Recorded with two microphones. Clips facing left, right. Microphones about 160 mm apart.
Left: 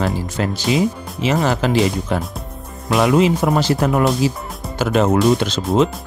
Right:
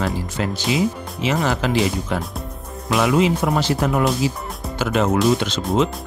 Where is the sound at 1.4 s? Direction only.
40° left (ahead or behind).